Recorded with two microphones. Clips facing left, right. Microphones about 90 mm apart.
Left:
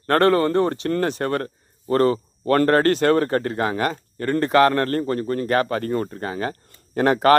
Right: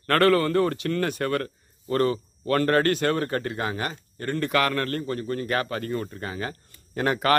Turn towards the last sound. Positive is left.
turn(degrees=40)  # may be behind; listen again after turning